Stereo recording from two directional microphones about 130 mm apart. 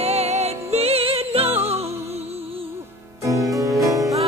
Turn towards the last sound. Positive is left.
turn(degrees=0)  # may be behind; listen again after turning